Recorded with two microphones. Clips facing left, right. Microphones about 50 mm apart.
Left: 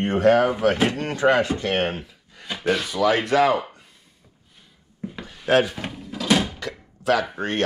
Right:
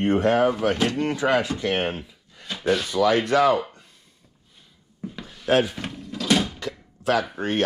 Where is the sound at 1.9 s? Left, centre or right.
Centre.